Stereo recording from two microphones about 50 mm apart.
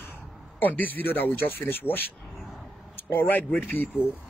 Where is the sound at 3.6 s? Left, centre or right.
Left.